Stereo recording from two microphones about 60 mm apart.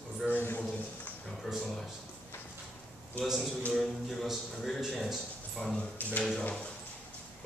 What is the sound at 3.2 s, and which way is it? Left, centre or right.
A man's voice, centre.